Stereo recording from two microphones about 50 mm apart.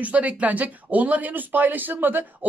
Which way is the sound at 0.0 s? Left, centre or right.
Right.